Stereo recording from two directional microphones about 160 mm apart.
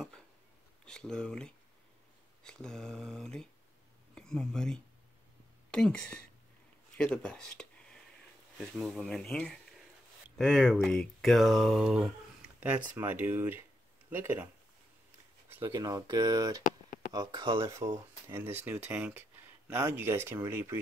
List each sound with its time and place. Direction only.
0.8 s mantra: 5° left (ahead or behind)
4.1 s speech: 5° left (ahead or behind)
7.0 s speech: 5° left (ahead or behind)
8.5 s mantra: 5° right (ahead or behind)
10.3 s speech: 5° left (ahead or behind); by 14.5 s 15° right (ahead or behind)
15.7 s speech: 25° right (ahead or behind)
17.6 s speech: 20° right (ahead or behind)